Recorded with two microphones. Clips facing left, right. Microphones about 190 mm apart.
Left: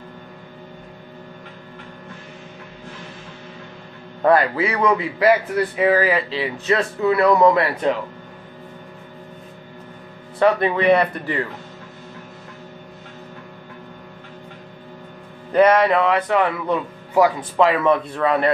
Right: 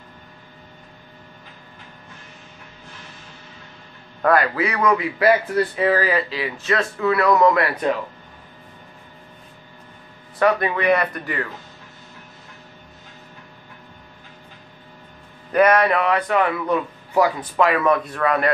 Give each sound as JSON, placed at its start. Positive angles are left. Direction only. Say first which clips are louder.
{"t": 4.2, "sound": "speech", "louder": "left 2 dB", "side_deg": 25}
{"t": 10.4, "sound": "speech", "louder": "left 2 dB", "side_deg": 25}
{"t": 15.5, "sound": "speech", "louder": "left 2 dB", "side_deg": 25}